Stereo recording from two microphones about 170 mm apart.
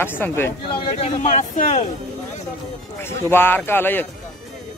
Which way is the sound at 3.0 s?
15° left (ahead or behind).